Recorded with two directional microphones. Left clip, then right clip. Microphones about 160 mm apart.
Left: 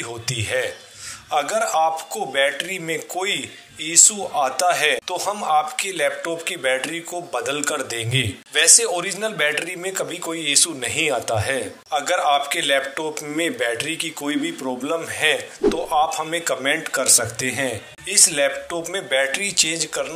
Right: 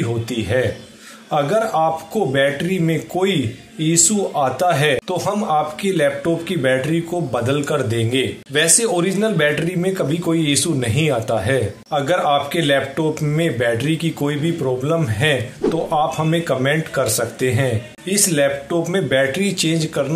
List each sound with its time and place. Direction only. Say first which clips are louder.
0.0 s a man's voice: right 4 dB; 35° left (ahead or behind)